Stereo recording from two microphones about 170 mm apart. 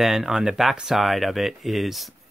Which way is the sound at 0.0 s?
Centre (ahead or behind).